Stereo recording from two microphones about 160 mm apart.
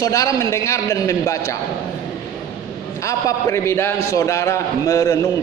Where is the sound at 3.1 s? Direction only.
20° left (ahead or behind).